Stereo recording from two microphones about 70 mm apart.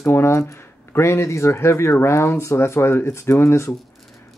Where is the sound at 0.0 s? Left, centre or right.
Left.